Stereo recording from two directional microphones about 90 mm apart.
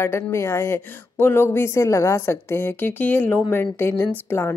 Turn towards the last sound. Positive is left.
turn(degrees=25)  # may be behind; listen again after turning